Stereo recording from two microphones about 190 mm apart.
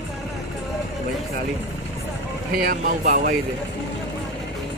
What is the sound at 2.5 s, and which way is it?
Speech, 50° right (ahead or behind).